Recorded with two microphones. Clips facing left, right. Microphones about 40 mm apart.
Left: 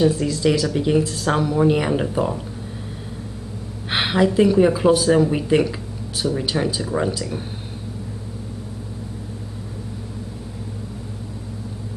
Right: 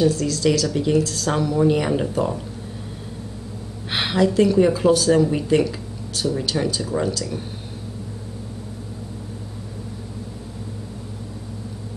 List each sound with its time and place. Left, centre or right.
0.0 s speech: centre
3.9 s speech: centre